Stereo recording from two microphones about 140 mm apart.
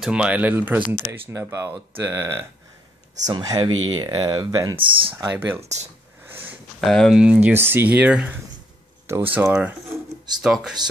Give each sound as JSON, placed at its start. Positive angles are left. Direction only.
{"t": 0.0, "sound": "speech", "side_deg": -5}
{"t": 3.3, "sound": "speech", "side_deg": -30}
{"t": 5.6, "sound": "speech", "side_deg": -55}
{"t": 6.8, "sound": "speech", "side_deg": 0}